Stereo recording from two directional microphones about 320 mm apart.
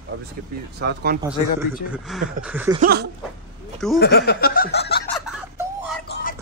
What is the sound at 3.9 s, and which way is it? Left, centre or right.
Snicker, left.